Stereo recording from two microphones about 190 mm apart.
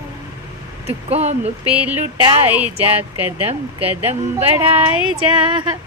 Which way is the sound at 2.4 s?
10° right (ahead or behind).